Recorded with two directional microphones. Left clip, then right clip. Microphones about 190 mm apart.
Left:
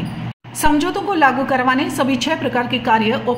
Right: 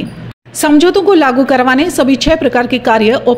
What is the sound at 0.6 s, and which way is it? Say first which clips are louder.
A woman's voice: right 9 dB; 40° right (ahead or behind).